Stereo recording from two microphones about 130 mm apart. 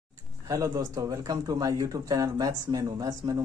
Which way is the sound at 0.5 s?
25° right (ahead or behind).